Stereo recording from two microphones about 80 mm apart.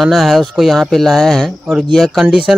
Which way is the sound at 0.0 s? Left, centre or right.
Centre.